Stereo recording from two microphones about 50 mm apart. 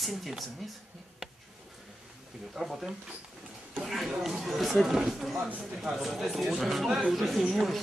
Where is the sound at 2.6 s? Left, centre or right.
Centre.